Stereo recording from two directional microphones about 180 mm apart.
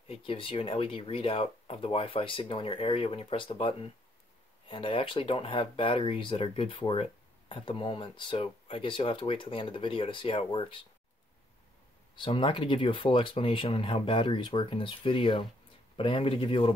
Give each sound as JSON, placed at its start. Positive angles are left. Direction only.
{"t": 0.1, "sound": "speech", "side_deg": 30}
{"t": 12.2, "sound": "speech", "side_deg": 25}